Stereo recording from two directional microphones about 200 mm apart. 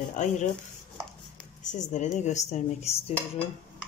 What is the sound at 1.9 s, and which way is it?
A woman's voice, 35° left (ahead or behind).